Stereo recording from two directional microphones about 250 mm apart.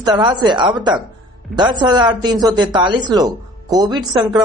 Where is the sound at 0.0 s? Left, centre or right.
Centre.